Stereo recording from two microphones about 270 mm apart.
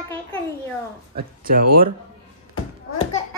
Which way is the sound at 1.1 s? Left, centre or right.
Right.